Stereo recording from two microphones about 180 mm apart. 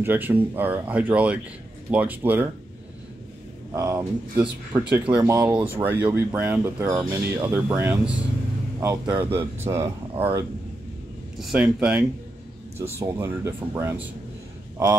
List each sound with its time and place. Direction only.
0.0 s speech: 10° right (ahead or behind)
3.7 s speech: 15° right (ahead or behind)
11.3 s speech: 5° right (ahead or behind)